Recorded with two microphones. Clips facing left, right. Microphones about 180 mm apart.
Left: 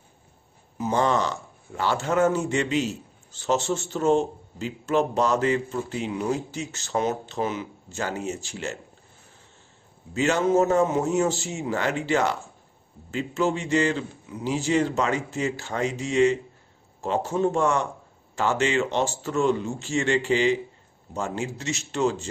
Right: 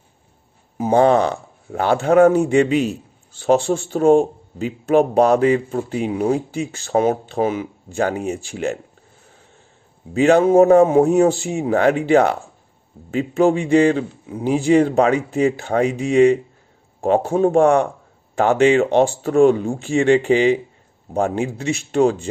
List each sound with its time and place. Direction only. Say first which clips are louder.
0.7 s a man's voice: right 9 dB; 55° right (ahead or behind)
10.1 s a man's voice: right 9 dB; 55° right (ahead or behind)